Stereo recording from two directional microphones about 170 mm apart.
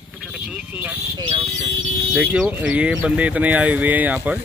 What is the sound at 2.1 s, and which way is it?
Speech, 5° right (ahead or behind).